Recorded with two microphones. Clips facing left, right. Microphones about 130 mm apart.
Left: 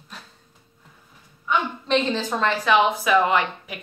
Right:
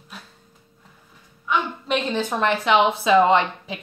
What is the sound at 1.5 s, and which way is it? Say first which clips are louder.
A woman's voice: left 1 dB; 10° right (ahead or behind).